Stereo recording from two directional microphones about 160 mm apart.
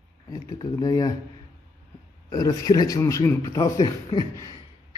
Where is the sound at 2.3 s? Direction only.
25° left (ahead or behind).